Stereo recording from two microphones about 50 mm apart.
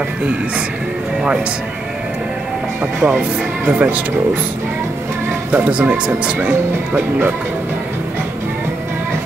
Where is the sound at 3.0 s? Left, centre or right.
Right.